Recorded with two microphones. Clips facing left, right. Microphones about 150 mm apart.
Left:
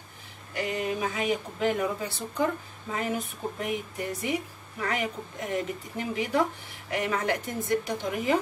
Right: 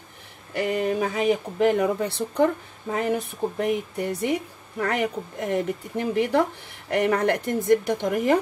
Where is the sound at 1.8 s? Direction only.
60° right (ahead or behind).